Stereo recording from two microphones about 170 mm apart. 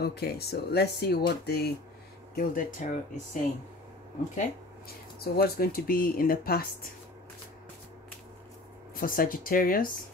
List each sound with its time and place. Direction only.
0.0 s speech: 70° left (ahead or behind)
2.3 s speech: 55° left (ahead or behind)
4.4 s speech: 65° left (ahead or behind)
8.9 s speech: 55° left (ahead or behind)